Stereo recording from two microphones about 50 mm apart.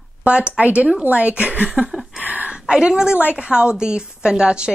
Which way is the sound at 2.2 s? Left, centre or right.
Right.